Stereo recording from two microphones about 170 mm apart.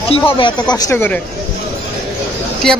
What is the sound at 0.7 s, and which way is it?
Speech, 20° left (ahead or behind).